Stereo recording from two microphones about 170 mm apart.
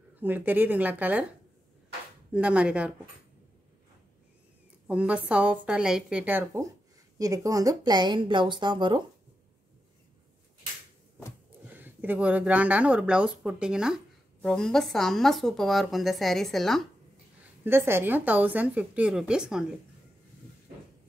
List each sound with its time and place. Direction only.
0.1 s a woman's voice: 10° right (ahead or behind)
2.3 s a woman's voice: 5° right (ahead or behind)
4.8 s a woman's voice: 5° right (ahead or behind)
7.2 s speech: 20° right (ahead or behind)
11.7 s speech: 10° right (ahead or behind)
17.6 s a woman's voice: 15° right (ahead or behind)